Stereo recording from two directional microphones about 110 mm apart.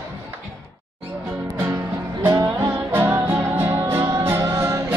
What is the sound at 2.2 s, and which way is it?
Music, 25° right (ahead or behind).